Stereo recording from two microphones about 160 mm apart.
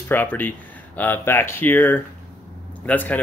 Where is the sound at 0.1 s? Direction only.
10° left (ahead or behind).